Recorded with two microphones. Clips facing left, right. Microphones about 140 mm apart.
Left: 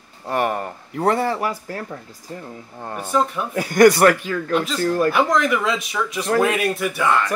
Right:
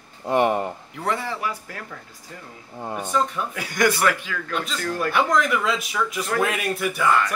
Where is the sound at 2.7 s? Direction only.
5° right (ahead or behind).